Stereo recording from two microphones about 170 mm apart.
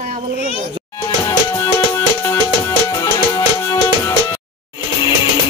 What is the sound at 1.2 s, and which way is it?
Music, 15° left (ahead or behind).